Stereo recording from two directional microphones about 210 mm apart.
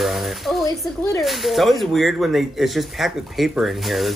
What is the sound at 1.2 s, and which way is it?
Speech, centre (ahead or behind).